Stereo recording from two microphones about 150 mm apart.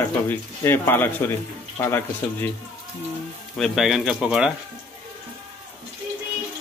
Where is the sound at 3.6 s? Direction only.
Centre (ahead or behind).